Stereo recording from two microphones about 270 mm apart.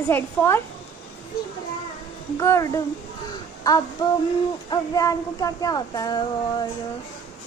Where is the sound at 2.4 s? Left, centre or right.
Centre.